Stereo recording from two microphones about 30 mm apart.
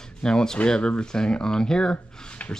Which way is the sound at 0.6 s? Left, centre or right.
Left.